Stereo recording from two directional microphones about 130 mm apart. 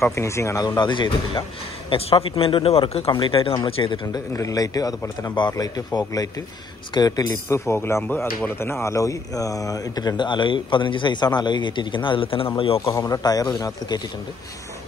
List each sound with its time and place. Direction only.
0.0 s speech: 20° left (ahead or behind); by 1.4 s 35° left (ahead or behind)
1.9 s speech: 45° left (ahead or behind)
12.9 s speech: 25° left (ahead or behind)